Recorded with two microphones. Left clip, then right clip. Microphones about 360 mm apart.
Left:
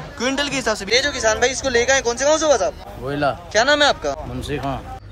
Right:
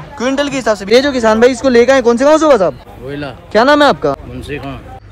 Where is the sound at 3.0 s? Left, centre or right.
Centre.